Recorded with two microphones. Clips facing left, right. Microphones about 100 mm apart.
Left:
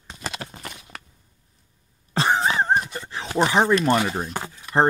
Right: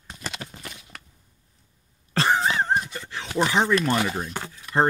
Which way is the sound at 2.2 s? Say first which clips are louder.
Left 1 dB; 25° left (ahead or behind).